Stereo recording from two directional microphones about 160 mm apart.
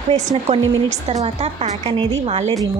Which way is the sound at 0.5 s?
40° right (ahead or behind).